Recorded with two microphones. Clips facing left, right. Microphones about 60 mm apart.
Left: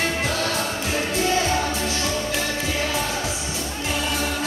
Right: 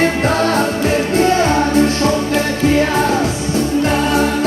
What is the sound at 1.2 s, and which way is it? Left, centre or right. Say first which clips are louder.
Music: right 8 dB; right.